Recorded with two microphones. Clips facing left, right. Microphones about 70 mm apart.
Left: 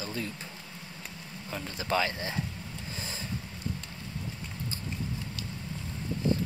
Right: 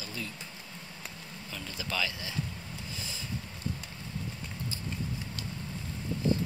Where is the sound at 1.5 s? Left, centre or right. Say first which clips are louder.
Left 7 dB; left.